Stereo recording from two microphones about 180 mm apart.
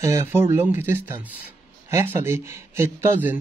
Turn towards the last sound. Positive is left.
turn(degrees=-10)  # may be behind; listen again after turning